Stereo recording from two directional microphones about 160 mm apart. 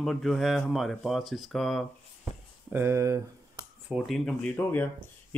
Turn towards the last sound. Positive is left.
turn(degrees=15)  # may be behind; listen again after turning